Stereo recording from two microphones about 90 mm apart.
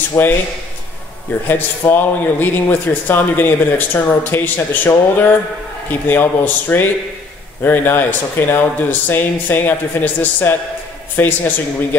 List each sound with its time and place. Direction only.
0.2 s speech: 25° left (ahead or behind)
1.5 s speech: 20° left (ahead or behind)